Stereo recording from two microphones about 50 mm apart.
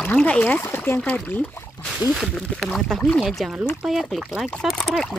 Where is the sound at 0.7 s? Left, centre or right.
Left.